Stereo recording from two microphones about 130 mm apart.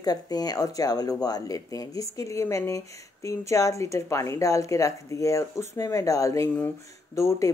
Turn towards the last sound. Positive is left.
turn(degrees=25)  # may be behind; listen again after turning